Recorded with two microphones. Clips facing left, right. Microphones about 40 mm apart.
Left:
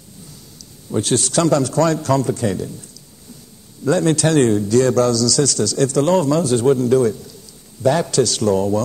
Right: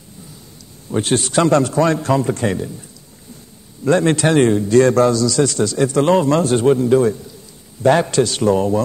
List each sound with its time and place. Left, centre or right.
0.8 s a man's voice: right
3.8 s a man's voice: right